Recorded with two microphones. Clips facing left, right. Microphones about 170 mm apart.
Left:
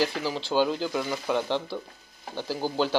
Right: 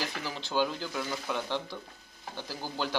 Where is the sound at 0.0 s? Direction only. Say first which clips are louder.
Left 9 dB; 30° left (ahead or behind).